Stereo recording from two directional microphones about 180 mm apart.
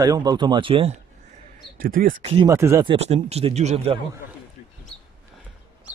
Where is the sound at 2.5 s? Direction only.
15° right (ahead or behind).